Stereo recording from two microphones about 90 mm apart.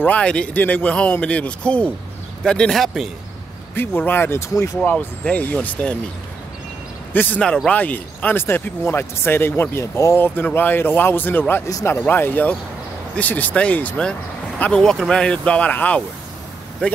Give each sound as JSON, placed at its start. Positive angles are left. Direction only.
{"t": 0.0, "sound": "a man's voice", "side_deg": 15}
{"t": 3.7, "sound": "speech", "side_deg": 25}
{"t": 4.8, "sound": "a man's voice", "side_deg": 15}
{"t": 7.2, "sound": "speech", "side_deg": 20}
{"t": 7.4, "sound": "a man's voice", "side_deg": 10}